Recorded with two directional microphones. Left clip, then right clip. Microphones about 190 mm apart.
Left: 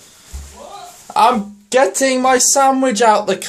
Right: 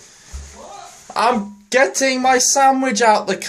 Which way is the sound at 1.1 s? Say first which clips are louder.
Left 4 dB; 5° left (ahead or behind).